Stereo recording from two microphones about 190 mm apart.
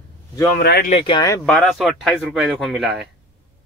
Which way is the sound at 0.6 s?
55° left (ahead or behind).